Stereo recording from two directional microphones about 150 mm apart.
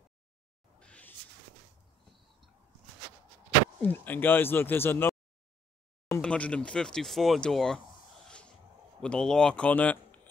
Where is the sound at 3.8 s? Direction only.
10° left (ahead or behind).